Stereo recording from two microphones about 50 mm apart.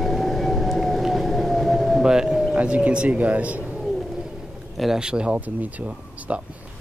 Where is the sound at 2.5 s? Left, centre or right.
Right.